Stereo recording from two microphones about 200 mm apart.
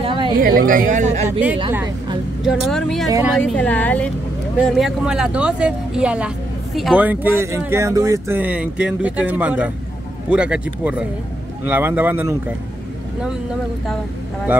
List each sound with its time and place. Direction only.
0.0 s a sound: 25° right (ahead or behind)
0.4 s speech: 45° right (ahead or behind)
2.4 s a woman's voice: centre (ahead or behind)